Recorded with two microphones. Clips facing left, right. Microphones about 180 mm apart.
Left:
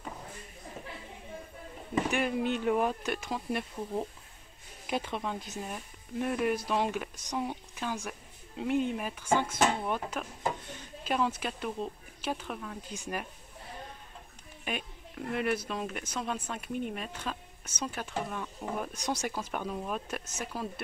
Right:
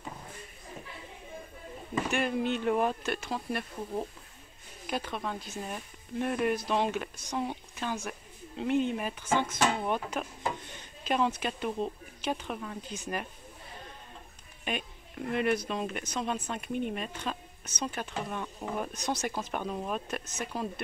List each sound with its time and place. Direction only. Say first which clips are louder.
2.0 s speech: right 2 dB; 10° left (ahead or behind)
4.8 s speech: left 1 dB; 20° left (ahead or behind)
5.6 s a woman's voice: right 1 dB; 5° left (ahead or behind)
14.6 s speech: right 2 dB; 5° left (ahead or behind)
18.9 s speech: right 1 dB; 15° left (ahead or behind)